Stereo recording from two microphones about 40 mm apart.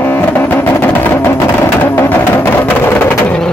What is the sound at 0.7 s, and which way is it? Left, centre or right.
Music, left.